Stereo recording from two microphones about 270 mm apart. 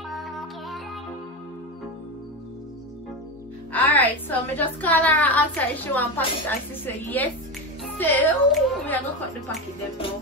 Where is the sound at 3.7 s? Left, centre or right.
Centre.